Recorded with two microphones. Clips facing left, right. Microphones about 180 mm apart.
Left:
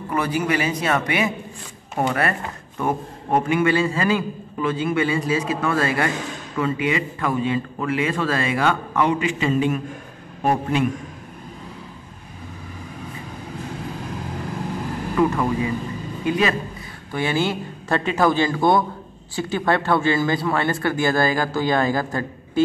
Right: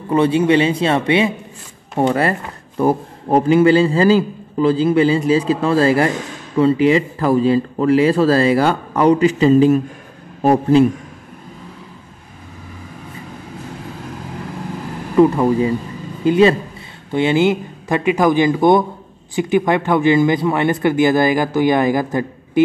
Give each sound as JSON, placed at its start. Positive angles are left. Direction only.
{"t": 0.1, "sound": "a man's voice", "side_deg": -25}
{"t": 15.1, "sound": "a man's voice", "side_deg": -30}